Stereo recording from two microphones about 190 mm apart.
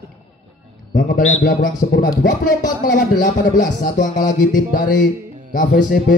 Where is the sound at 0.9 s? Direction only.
45° left (ahead or behind).